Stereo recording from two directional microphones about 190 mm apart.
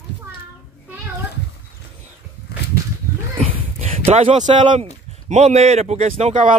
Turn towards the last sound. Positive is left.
turn(degrees=-35)  # may be behind; listen again after turning